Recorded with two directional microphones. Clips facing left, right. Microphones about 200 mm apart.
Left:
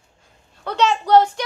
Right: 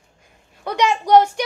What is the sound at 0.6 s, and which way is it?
Speech, 10° right (ahead or behind).